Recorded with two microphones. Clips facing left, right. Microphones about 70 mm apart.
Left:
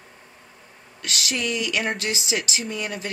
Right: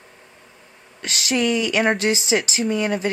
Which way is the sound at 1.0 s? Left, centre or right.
Right.